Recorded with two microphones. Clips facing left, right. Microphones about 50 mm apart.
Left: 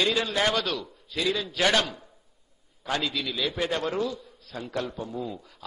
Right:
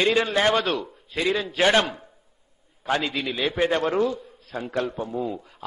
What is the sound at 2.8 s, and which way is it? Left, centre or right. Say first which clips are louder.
A man's voice: right 4 dB; right.